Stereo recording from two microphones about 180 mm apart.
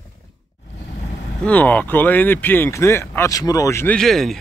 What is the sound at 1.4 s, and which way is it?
A man's voice, 10° left (ahead or behind).